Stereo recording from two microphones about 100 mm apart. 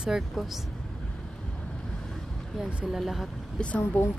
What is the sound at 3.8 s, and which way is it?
Speech, 20° left (ahead or behind).